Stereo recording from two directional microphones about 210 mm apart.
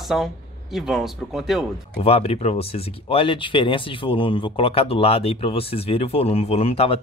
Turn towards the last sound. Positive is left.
turn(degrees=30)  # may be behind; listen again after turning